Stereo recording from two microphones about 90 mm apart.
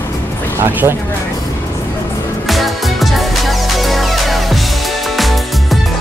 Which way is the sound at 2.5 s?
Centre (ahead or behind).